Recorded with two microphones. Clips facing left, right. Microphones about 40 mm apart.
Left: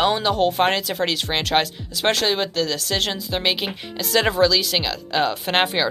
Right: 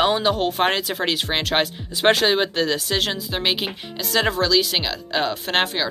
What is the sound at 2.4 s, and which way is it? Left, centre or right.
Speech, right.